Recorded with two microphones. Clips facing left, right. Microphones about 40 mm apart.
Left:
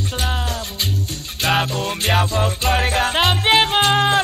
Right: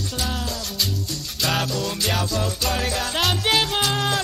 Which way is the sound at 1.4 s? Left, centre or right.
Left.